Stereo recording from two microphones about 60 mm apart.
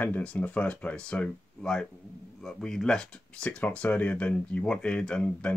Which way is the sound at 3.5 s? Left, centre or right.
Left.